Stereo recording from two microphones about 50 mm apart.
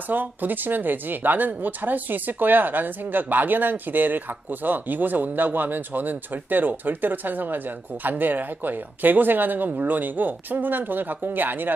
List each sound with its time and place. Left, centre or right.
0.1 s speech: right